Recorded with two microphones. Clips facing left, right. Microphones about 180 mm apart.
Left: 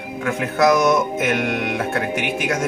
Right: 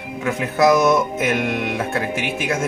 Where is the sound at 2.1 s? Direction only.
15° left (ahead or behind).